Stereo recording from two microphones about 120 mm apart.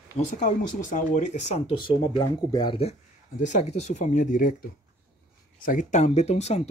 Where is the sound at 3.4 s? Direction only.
75° left (ahead or behind); by 4.5 s 90° left.